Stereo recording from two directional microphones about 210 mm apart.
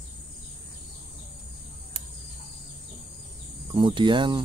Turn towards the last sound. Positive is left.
turn(degrees=-20)  # may be behind; listen again after turning